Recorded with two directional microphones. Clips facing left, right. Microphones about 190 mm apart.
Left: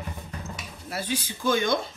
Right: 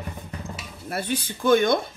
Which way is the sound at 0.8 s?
55° right (ahead or behind).